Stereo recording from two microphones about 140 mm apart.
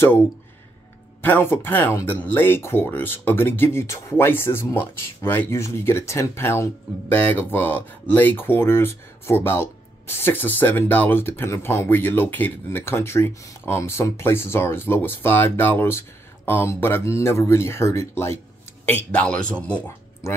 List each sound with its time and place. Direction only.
1.2 s speech: 15° left (ahead or behind)
18.9 s speech: 10° left (ahead or behind)
20.2 s speech: 20° left (ahead or behind)